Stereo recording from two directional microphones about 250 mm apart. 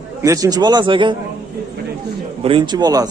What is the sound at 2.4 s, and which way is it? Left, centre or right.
Speech, centre.